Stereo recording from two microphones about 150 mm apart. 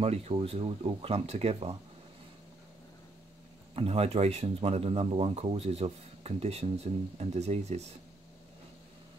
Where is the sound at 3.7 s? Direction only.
40° right (ahead or behind).